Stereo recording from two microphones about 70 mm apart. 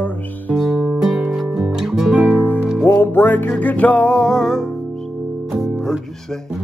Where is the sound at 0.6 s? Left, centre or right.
Centre.